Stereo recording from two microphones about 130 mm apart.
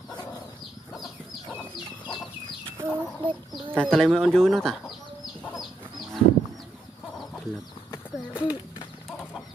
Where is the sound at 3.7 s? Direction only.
5° left (ahead or behind).